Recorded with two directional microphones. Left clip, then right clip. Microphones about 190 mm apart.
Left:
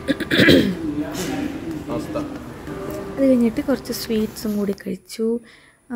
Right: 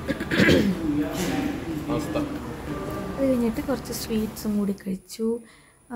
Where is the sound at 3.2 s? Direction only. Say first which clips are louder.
Left 7 dB; 20° left (ahead or behind).